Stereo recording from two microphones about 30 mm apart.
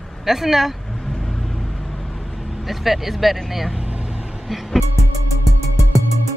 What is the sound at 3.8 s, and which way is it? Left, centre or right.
Vehicle, right.